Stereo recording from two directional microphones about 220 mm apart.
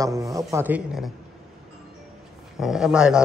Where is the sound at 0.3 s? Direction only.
15° right (ahead or behind).